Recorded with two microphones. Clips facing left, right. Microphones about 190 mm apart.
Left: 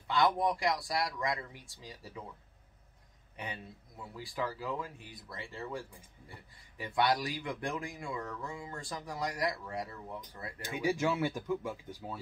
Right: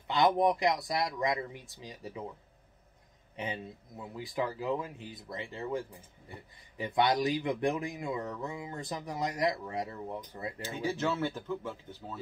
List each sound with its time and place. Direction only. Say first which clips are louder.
0.1 s speech: right 3 dB; 20° right (ahead or behind)
3.3 s speech: right 5 dB; 20° right (ahead or behind)
10.6 s speech: left 2 dB; 15° left (ahead or behind)